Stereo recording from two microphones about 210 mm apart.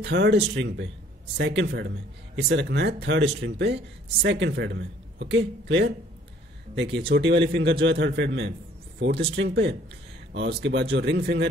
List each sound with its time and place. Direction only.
0.0 s a man's voice: 55° right (ahead or behind)